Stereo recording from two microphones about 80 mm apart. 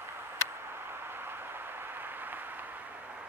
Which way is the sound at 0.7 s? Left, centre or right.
Right.